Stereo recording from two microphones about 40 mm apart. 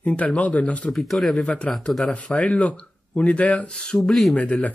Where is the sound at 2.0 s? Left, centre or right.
Left.